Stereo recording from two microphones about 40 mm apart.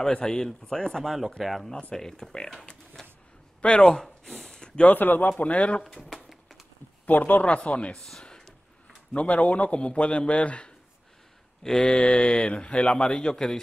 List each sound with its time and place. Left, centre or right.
0.0 s speech: centre
2.0 s speech: centre
2.6 s a sound: left
3.6 s speech: left
3.9 s a sound: centre
4.6 s a sound: left
4.8 s speech: left
5.4 s a man's voice: left
7.1 s speech: left
7.4 s a man's voice: left
7.9 s speech: centre
8.2 s a sound: left
9.1 s a man's voice: left
11.6 s speech: centre